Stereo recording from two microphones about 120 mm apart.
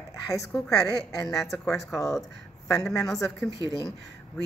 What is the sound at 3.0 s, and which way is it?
Speech, 5° left (ahead or behind).